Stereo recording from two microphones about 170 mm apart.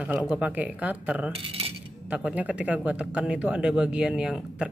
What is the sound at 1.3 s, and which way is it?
Cutlery, 35° right (ahead or behind).